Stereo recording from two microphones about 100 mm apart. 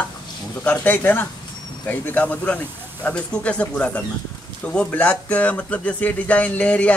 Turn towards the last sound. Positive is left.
turn(degrees=15)  # may be behind; listen again after turning